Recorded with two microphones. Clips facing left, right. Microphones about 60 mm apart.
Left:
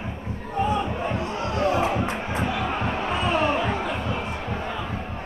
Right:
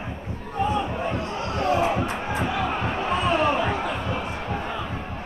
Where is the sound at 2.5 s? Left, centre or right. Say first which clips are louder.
Right 1 dB; centre.